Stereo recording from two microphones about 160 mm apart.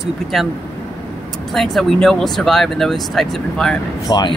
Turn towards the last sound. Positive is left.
turn(degrees=25)  # may be behind; listen again after turning